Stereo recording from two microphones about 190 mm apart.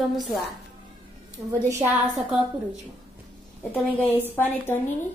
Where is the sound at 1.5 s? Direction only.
15° right (ahead or behind).